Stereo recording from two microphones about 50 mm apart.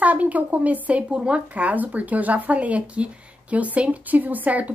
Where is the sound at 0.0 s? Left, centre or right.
Right.